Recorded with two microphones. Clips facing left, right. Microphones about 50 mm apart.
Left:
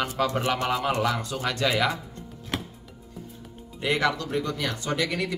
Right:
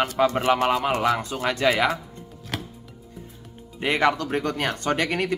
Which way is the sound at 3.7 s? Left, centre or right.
Right.